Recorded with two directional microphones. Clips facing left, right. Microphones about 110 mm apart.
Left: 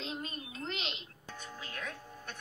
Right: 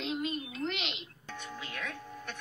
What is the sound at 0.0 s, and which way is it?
Music, 35° left (ahead or behind).